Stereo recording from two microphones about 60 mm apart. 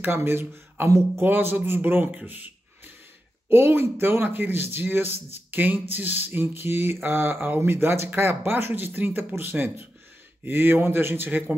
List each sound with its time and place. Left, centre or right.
0.0 s speech: right
0.8 s speech: right
1.2 s speech: right
2.1 s a sound: right
3.4 s speech: right